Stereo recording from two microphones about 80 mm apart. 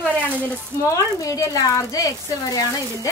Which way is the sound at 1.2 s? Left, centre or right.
Left.